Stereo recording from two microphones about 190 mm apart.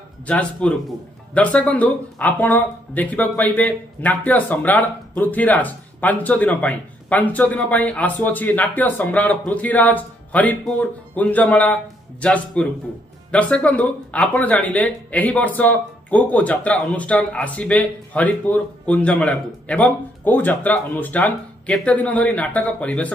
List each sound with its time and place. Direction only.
0.3 s a man's voice: 5° left (ahead or behind)